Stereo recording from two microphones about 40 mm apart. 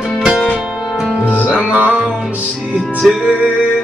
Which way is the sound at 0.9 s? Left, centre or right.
Centre.